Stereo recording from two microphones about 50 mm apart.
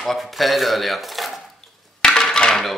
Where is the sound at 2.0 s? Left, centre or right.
Centre.